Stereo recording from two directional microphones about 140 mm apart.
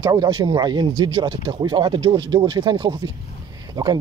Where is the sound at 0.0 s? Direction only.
30° right (ahead or behind).